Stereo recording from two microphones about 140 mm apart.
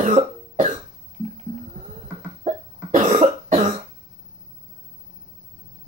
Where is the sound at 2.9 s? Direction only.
60° right (ahead or behind).